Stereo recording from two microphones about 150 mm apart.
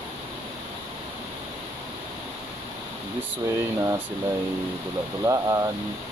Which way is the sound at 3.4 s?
20° right (ahead or behind).